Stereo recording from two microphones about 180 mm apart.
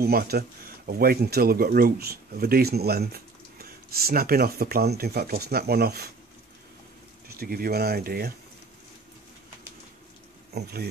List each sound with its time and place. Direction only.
0.0 s speech: 60° right (ahead or behind)
7.3 s speech: 55° right (ahead or behind)
10.5 s speech: 60° right (ahead or behind)